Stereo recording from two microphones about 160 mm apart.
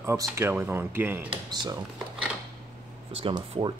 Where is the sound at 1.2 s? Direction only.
25° right (ahead or behind).